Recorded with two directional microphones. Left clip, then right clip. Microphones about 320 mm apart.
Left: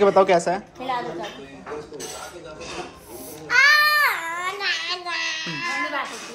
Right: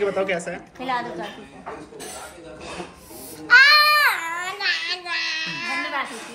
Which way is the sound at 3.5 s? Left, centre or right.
Centre.